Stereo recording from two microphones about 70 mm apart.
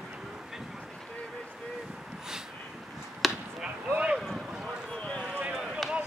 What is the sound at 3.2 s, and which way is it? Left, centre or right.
Basketball bounce, centre.